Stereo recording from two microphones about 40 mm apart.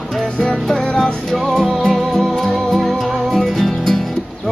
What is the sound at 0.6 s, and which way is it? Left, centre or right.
Music, centre.